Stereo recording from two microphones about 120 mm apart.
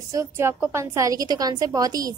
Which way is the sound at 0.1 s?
25° right (ahead or behind).